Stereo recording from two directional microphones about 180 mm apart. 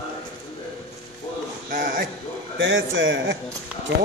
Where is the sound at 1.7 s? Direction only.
50° right (ahead or behind).